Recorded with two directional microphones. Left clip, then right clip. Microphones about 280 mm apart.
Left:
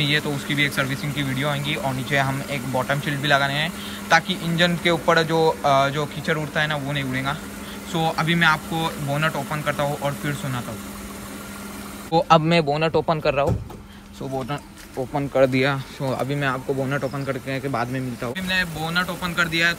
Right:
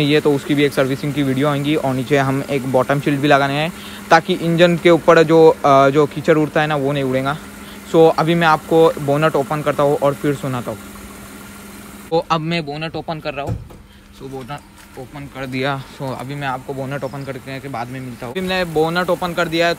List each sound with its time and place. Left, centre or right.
0.0 s speech: centre
12.1 s speech: centre
12.4 s a man's voice: centre
15.1 s a man's voice: centre
15.5 s speech: centre
18.3 s speech: centre